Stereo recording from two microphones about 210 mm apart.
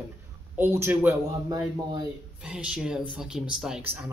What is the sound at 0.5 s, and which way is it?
Speech, 10° right (ahead or behind).